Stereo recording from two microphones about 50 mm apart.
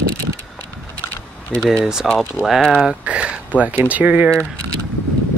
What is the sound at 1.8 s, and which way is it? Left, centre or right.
Speech, centre.